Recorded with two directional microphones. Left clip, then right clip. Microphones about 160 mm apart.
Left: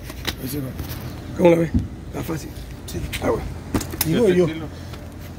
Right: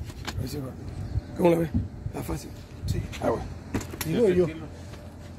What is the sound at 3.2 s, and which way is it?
Vehicle, 75° right (ahead or behind).